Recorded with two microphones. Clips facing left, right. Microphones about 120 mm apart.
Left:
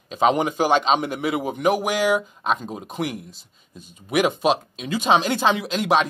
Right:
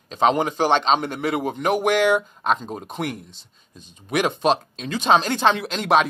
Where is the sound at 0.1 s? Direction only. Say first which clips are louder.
Even; 10° left (ahead or behind).